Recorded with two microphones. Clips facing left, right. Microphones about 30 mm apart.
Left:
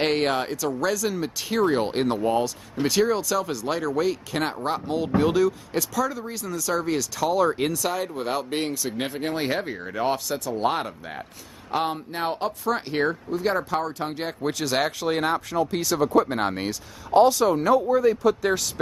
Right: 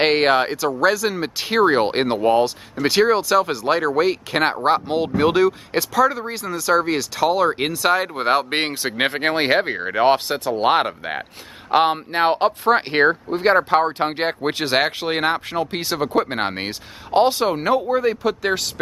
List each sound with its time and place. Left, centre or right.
0.0 s speech: right
0.8 s speech: right
1.2 s speech: right
5.8 s speech: right